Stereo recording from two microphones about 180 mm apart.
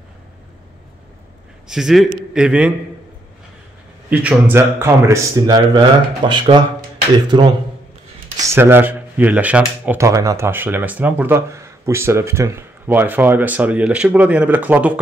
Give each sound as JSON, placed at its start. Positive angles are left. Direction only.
{"t": 1.7, "sound": "a man's voice", "side_deg": 0}
{"t": 4.1, "sound": "speech", "side_deg": -10}